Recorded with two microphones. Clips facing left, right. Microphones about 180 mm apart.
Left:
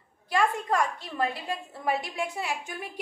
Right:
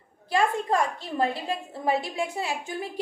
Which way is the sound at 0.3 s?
30° right (ahead or behind).